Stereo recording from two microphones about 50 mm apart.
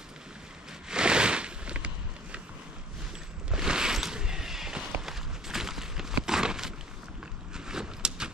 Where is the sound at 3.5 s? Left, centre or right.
Centre.